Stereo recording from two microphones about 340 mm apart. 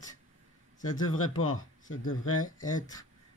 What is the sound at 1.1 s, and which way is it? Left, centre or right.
Speech, left.